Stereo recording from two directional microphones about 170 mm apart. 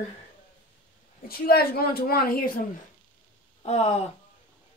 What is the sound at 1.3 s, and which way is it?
Speech, 65° left (ahead or behind).